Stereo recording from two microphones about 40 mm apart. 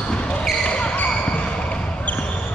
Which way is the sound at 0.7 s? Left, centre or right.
Left.